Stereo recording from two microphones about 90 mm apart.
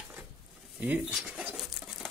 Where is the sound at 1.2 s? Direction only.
5° right (ahead or behind).